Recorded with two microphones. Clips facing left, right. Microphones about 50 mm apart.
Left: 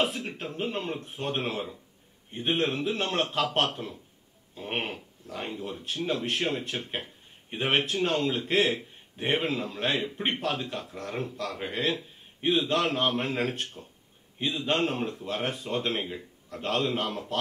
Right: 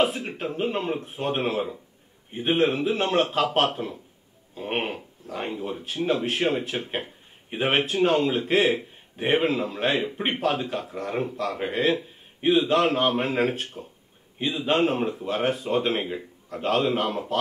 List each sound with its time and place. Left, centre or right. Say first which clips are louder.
0.0 s a man's voice: right 5 dB; centre